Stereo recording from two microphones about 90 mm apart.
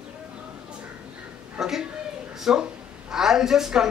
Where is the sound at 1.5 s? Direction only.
5° right (ahead or behind).